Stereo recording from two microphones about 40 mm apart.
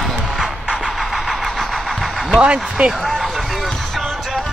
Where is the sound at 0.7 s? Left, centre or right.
Centre.